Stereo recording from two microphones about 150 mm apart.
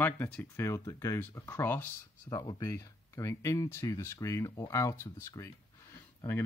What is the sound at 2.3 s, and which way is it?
Speech, 25° left (ahead or behind).